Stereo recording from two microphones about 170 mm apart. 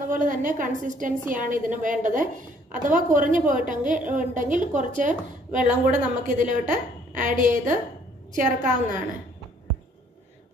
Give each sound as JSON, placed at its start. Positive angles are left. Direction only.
{"t": 0.1, "sound": "a woman's voice", "side_deg": -50}